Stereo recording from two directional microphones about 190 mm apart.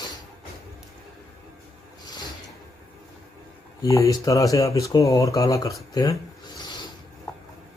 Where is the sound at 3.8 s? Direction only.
15° left (ahead or behind).